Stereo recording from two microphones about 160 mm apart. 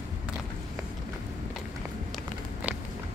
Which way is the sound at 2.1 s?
10° right (ahead or behind).